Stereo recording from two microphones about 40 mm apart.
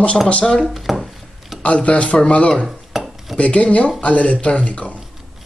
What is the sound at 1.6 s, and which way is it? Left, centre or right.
Speech, left.